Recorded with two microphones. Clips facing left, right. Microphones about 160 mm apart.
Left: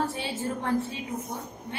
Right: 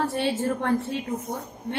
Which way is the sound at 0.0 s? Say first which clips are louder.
Right 5 dB; 65° right (ahead or behind).